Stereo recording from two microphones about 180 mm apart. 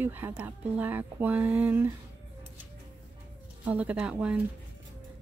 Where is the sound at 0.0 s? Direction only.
10° right (ahead or behind).